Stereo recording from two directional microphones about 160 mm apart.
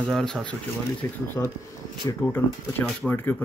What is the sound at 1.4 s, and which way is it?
Speech, 15° left (ahead or behind).